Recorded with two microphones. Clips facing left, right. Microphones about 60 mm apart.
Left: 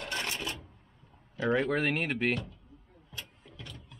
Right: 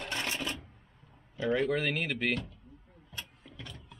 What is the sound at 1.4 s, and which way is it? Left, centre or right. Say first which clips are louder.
Speech: left 1 dB; left.